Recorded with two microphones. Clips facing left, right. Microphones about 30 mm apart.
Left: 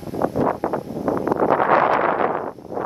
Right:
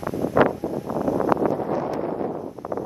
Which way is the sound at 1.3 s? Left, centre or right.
Left.